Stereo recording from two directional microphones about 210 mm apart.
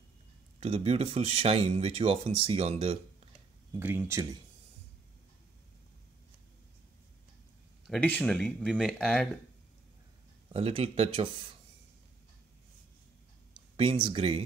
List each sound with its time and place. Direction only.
0.6 s speech: 30° right (ahead or behind)
3.7 s speech: 10° right (ahead or behind)
7.8 s speech: 5° left (ahead or behind)
10.5 s speech: 30° right (ahead or behind)
13.7 s speech: 25° right (ahead or behind)